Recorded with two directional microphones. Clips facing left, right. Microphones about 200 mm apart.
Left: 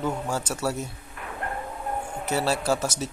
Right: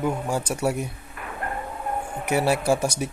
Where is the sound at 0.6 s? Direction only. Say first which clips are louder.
Right 4 dB; 10° right (ahead or behind).